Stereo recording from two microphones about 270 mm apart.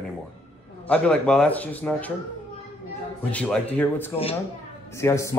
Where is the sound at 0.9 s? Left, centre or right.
Centre.